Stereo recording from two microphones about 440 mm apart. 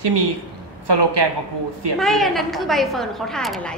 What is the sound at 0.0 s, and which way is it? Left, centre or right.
Speech, right.